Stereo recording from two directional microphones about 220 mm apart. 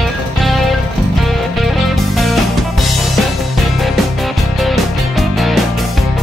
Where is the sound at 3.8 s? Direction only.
Centre (ahead or behind).